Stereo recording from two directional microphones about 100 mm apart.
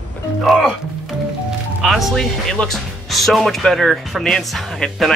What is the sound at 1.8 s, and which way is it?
Speech, 5° right (ahead or behind).